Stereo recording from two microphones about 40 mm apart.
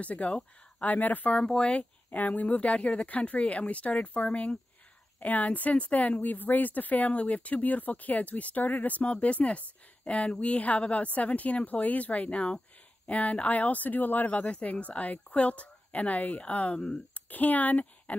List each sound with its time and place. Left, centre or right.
0.0 s speech: left
1.6 s speech: left
2.1 s speech: left
2.4 s speech: left
4.3 s speech: left
5.2 s speech: left
6.2 s speech: left
16.7 s speech: centre
17.1 s speech: left